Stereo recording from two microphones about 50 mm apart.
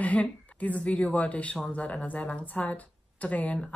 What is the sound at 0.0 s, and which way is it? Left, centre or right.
Speech, left.